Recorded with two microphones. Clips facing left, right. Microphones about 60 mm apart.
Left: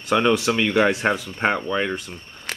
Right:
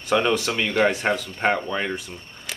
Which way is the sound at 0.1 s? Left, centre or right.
Centre.